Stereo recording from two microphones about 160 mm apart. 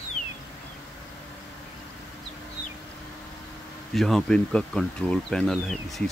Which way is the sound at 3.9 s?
Centre (ahead or behind).